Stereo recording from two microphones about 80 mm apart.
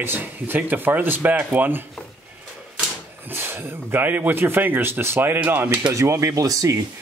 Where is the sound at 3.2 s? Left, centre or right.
Right.